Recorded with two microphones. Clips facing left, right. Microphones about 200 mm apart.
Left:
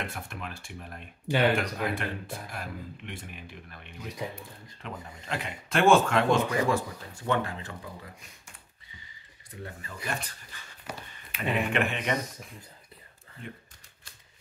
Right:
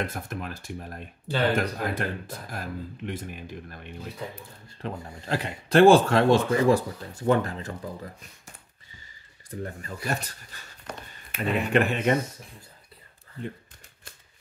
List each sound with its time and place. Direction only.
0.0 s speech: 40° right (ahead or behind)
1.2 s speech: 15° left (ahead or behind)
1.5 s speech: 40° right (ahead or behind)
9.6 s speech: 40° right (ahead or behind)
10.9 s speech: 5° left (ahead or behind)
11.3 s speech: 40° right (ahead or behind)